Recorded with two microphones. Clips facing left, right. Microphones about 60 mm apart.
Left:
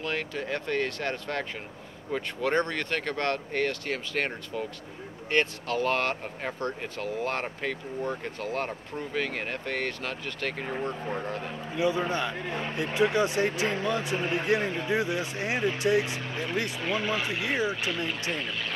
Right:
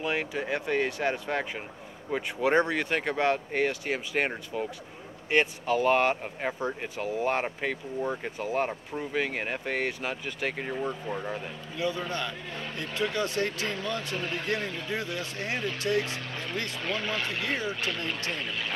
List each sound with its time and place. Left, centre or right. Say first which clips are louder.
0.0 s speech: right 2 dB; centre
11.7 s speech: left 4 dB; left
18.4 s speech: even; centre